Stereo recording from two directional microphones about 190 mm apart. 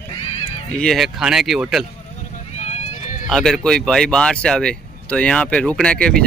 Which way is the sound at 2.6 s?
35° left (ahead or behind).